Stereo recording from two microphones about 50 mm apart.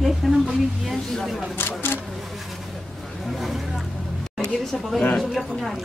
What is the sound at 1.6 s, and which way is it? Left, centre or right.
Speech, left.